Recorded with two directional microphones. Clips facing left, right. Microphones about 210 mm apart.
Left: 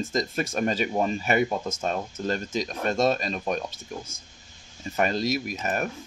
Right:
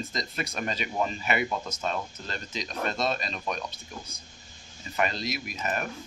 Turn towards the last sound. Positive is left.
turn(degrees=45)  # may be behind; listen again after turning